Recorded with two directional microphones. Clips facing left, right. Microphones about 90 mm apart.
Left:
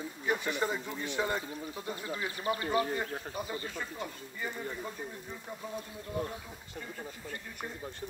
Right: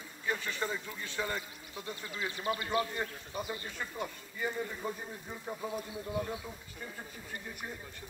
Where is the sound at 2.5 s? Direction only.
30° left (ahead or behind).